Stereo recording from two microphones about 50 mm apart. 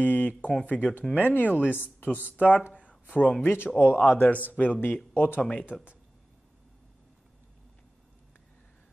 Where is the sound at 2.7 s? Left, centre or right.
Left.